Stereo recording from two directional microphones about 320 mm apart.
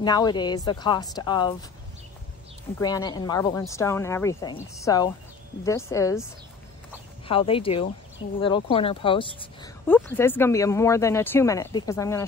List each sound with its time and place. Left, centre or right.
0.0 s speech: centre
2.8 s speech: centre
7.2 s speech: centre